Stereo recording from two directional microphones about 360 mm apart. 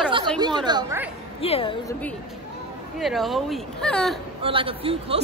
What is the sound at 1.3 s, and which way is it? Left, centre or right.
Speech, centre.